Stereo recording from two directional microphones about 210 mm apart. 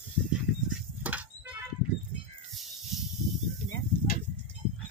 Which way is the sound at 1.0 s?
5° right (ahead or behind).